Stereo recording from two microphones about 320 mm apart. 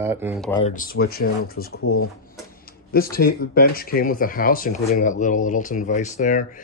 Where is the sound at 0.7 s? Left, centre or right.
Left.